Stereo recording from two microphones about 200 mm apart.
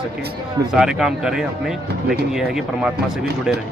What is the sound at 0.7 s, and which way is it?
Speech, centre (ahead or behind).